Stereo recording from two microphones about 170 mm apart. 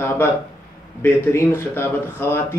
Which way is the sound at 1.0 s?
10° left (ahead or behind).